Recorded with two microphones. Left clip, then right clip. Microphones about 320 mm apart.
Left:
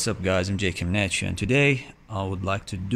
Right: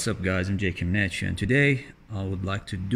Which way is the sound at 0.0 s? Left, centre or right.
Centre.